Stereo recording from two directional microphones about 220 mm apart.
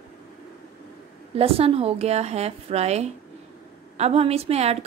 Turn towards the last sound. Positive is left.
turn(degrees=-30)  # may be behind; listen again after turning